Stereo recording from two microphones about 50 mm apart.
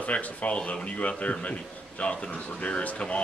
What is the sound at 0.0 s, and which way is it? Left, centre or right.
A man's voice, left.